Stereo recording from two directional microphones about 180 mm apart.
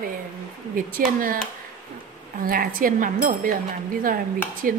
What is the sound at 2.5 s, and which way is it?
A woman's voice, 50° right (ahead or behind).